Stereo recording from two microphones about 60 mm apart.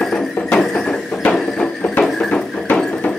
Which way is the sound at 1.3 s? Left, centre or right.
Centre.